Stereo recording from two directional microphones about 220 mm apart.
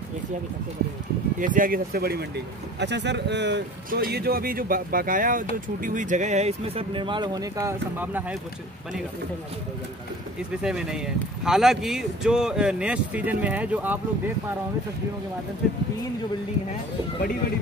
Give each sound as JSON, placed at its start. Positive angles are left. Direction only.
{"t": 1.4, "sound": "a man's voice", "side_deg": -35}
{"t": 10.6, "sound": "speech", "side_deg": -5}